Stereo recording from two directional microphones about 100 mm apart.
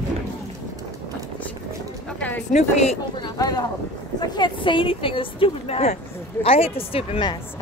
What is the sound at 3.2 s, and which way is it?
A woman's voice, 45° left (ahead or behind).